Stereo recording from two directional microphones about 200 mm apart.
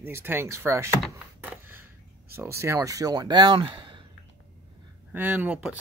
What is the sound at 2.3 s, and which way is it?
Speech, 15° right (ahead or behind).